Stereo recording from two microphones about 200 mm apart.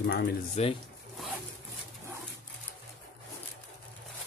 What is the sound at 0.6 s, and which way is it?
Speech, 35° left (ahead or behind).